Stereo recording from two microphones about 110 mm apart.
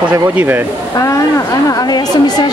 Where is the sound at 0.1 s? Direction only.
20° right (ahead or behind).